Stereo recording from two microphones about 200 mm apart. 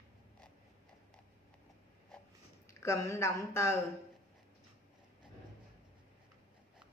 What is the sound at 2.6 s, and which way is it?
Speech, 15° left (ahead or behind).